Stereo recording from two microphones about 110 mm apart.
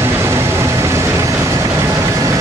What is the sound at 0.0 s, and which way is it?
Vehicle, 25° right (ahead or behind).